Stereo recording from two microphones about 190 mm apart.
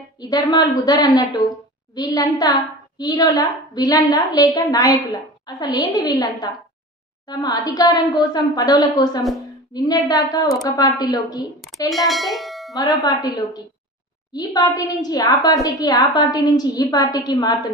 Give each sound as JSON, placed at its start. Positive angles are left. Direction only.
{"t": 0.2, "sound": "a woman's voice", "side_deg": 20}
{"t": 11.9, "sound": "clang", "side_deg": 0}
{"t": 13.0, "sound": "a woman's voice", "side_deg": 20}